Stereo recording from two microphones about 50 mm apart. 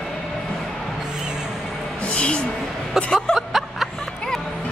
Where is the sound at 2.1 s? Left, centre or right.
Left.